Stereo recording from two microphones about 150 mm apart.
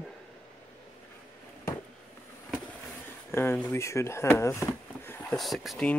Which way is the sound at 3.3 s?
15° left (ahead or behind).